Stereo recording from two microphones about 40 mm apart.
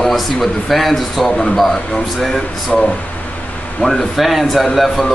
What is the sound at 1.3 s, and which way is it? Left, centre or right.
Speech, centre.